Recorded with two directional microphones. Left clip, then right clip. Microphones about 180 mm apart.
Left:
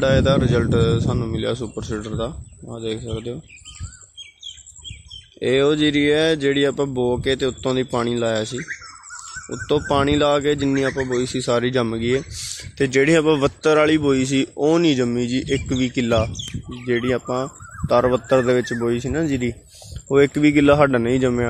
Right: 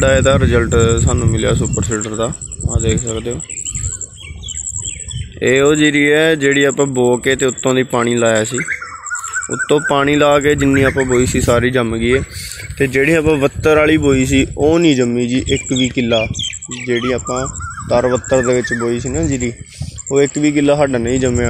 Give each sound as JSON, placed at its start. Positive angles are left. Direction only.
{"t": 0.0, "sound": "speech", "side_deg": 0}
{"t": 5.4, "sound": "speech", "side_deg": 0}
{"t": 12.4, "sound": "a sound", "side_deg": 15}
{"t": 13.3, "sound": "speech", "side_deg": 0}